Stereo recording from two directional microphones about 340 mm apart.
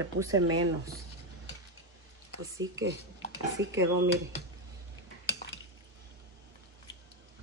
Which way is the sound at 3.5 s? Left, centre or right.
Right.